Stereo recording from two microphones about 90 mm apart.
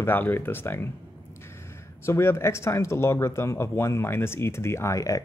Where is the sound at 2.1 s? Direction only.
30° left (ahead or behind).